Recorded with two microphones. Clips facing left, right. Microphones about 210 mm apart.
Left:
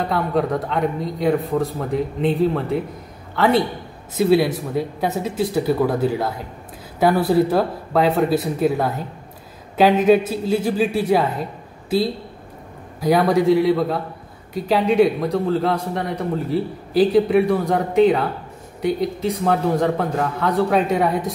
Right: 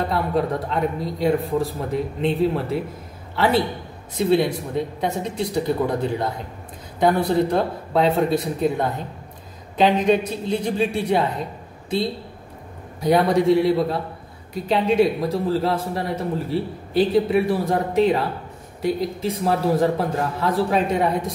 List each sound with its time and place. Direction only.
0.1 s a man's voice: centre (ahead or behind)
13.0 s a man's voice: centre (ahead or behind)